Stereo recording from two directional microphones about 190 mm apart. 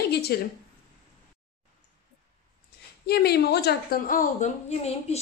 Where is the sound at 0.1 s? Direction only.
55° left (ahead or behind).